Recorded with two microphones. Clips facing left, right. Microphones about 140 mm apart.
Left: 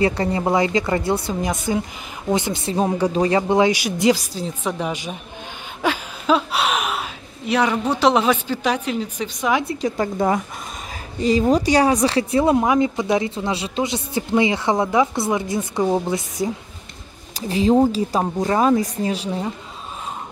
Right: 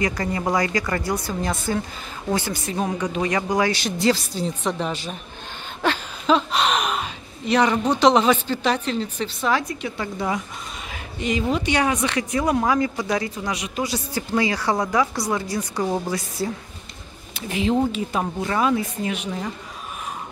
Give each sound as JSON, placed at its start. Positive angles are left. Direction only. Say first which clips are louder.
{"t": 0.0, "sound": "speech", "louder": "left 4 dB", "side_deg": 30}
{"t": 3.7, "sound": "a woman's voice", "louder": "left 3 dB", "side_deg": 10}
{"t": 5.8, "sound": "a sound", "louder": "left 1 dB", "side_deg": 5}
{"t": 7.9, "sound": "a woman's voice", "louder": "right 1 dB", "side_deg": 10}
{"t": 9.7, "sound": "speech", "louder": "left 6 dB", "side_deg": 40}
{"t": 11.1, "sound": "speech", "louder": "left 6 dB", "side_deg": 35}
{"t": 17.4, "sound": "speech", "louder": "left 5 dB", "side_deg": 35}